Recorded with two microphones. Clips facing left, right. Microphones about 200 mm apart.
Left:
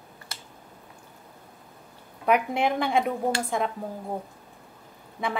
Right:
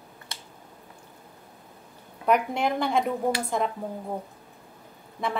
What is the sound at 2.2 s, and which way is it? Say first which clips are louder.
Speech: even; 5° left (ahead or behind).